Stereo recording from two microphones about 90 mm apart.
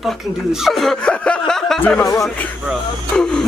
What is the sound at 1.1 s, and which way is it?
Chuckle, 10° left (ahead or behind).